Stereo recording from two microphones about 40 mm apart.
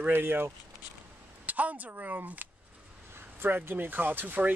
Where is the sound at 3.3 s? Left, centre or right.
Right.